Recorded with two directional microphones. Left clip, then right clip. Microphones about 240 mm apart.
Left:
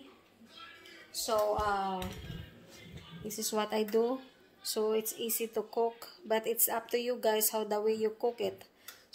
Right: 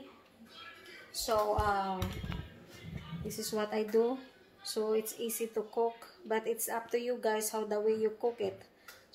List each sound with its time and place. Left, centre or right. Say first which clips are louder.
1.1 s speech: even; centre
3.3 s speech: left 2 dB; left